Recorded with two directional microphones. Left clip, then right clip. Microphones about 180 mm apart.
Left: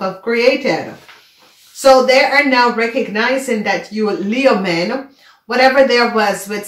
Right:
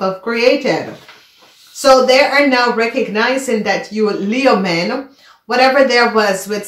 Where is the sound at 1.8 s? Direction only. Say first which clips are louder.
Even; 30° right (ahead or behind).